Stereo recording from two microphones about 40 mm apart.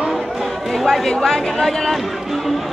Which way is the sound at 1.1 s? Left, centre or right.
Centre.